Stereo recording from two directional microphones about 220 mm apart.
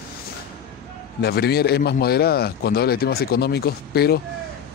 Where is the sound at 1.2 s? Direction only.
45° left (ahead or behind).